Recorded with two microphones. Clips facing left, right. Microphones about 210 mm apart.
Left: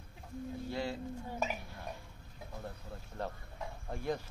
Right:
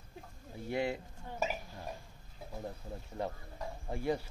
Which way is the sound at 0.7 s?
20° right (ahead or behind).